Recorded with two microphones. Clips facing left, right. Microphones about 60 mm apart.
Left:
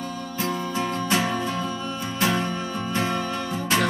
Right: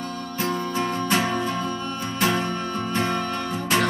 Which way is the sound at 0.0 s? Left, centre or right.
Centre.